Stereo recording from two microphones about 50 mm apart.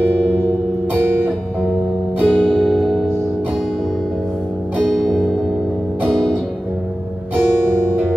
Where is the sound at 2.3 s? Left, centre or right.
Centre.